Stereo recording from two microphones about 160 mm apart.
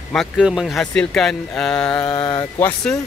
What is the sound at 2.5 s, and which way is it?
Speech, 10° left (ahead or behind).